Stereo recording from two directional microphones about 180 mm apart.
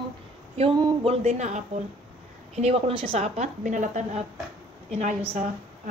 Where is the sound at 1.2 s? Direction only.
40° right (ahead or behind).